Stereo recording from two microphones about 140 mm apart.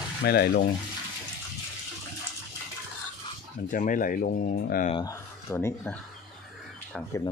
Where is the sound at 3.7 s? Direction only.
70° left (ahead or behind); by 4.9 s 90° left.